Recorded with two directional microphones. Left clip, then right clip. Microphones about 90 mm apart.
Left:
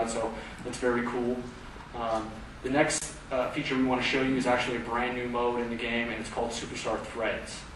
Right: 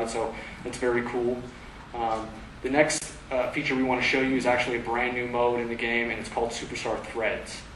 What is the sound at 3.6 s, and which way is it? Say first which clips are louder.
Speech: right 3 dB; 25° right (ahead or behind).